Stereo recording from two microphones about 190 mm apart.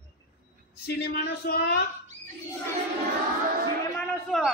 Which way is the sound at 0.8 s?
55° left (ahead or behind).